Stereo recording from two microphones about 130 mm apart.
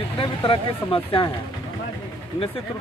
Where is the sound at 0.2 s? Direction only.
40° left (ahead or behind).